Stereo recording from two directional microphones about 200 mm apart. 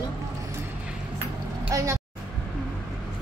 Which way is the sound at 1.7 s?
15° right (ahead or behind).